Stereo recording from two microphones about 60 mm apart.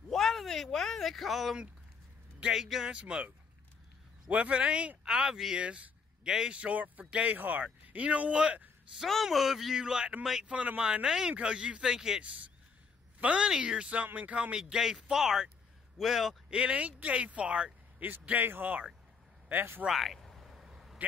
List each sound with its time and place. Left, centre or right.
0.1 s a sound: centre
2.4 s speech: centre
9.0 s speech: centre
13.2 s speech: centre
16.4 s speech: centre
19.5 s speech: right
19.9 s a sound: centre